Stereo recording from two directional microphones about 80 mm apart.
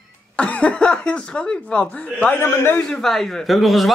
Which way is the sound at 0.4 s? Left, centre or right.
Centre.